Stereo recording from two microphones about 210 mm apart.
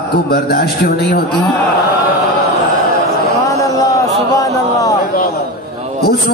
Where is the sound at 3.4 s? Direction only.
15° left (ahead or behind).